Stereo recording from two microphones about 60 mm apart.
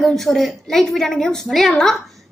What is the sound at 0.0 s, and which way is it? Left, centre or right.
A woman's voice, centre.